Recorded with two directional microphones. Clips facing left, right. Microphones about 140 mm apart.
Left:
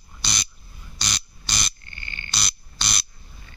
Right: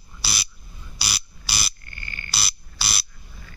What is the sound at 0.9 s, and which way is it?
Ratchet, 10° right (ahead or behind).